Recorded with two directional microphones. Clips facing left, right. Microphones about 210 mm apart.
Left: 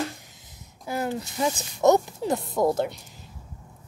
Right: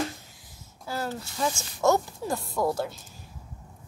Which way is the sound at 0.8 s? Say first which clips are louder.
Left 4 dB; 15° left (ahead or behind).